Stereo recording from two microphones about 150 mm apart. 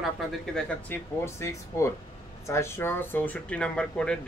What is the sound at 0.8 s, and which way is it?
Speech, 15° left (ahead or behind).